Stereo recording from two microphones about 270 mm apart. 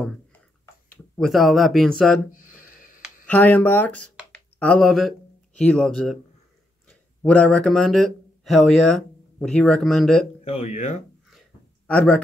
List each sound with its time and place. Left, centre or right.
0.0 s a sound: centre
0.8 s speech: centre
3.3 s speech: centre
4.2 s a sound: centre
6.9 s speech: centre
10.4 s speech: left
11.9 s speech: centre